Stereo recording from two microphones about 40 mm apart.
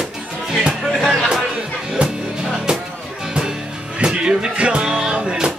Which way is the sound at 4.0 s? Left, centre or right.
Right.